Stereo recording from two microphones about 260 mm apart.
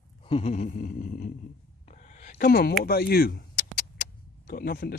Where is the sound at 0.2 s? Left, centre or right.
Left.